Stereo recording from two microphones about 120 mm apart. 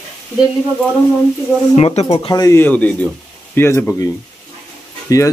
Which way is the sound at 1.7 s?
55° left (ahead or behind).